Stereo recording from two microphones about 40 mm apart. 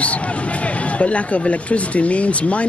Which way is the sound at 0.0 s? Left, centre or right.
Left.